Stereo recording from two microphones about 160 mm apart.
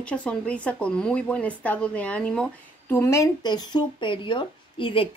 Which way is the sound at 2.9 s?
15° left (ahead or behind).